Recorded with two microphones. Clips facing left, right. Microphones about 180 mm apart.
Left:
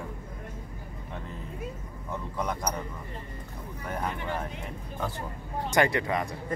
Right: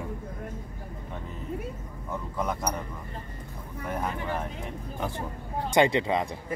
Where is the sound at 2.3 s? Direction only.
5° right (ahead or behind).